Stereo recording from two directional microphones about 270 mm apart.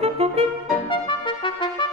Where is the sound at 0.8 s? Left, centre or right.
Centre.